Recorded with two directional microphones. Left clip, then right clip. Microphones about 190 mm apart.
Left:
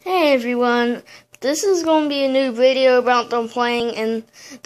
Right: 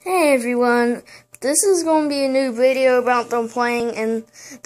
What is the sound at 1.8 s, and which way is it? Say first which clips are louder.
Speech: left 1 dB; 5° left (ahead or behind).